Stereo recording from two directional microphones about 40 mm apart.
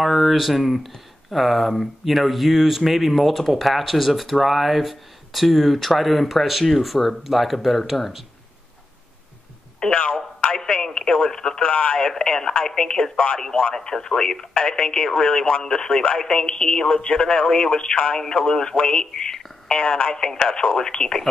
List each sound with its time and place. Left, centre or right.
0.0 s speech: centre
9.8 s speech: centre
11.6 s speech: left
12.6 s speech: centre
15.2 s speech: left
15.6 s speech: centre
18.8 s speech: left
19.1 s speech: centre